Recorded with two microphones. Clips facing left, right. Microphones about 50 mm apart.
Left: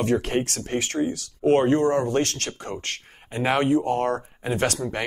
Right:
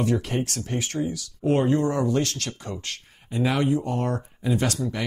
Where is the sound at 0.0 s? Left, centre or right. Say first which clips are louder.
Left 2 dB; left.